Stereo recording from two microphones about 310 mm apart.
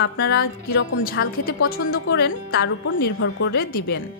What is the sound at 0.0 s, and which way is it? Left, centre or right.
Speech, left.